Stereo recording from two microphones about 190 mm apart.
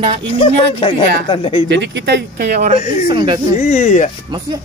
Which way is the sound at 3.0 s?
25° right (ahead or behind).